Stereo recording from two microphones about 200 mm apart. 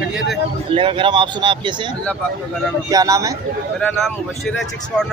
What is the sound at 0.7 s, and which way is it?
Speech, 25° right (ahead or behind).